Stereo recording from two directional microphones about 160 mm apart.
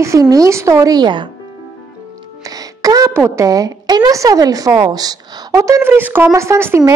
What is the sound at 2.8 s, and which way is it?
A woman's voice, 20° right (ahead or behind).